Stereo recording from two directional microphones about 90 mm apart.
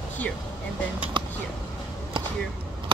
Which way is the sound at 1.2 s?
65° right (ahead or behind).